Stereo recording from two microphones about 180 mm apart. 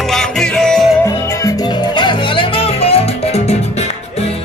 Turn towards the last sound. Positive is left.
turn(degrees=35)  # may be behind; listen again after turning